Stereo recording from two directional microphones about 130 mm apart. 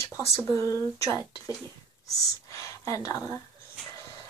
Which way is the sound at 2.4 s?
25° left (ahead or behind).